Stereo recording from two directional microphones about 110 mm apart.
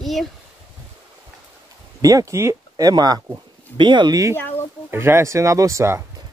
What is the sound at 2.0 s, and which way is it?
Speech, 30° right (ahead or behind).